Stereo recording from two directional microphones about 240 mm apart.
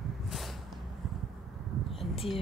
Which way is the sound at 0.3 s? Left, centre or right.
Centre.